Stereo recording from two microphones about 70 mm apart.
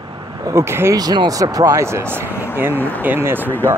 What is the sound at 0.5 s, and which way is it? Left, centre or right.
Speech, right.